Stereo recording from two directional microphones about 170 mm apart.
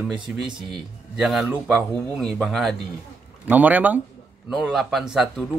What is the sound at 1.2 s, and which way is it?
Speech, 5° right (ahead or behind).